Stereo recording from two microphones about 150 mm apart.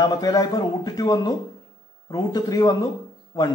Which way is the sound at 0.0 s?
25° left (ahead or behind).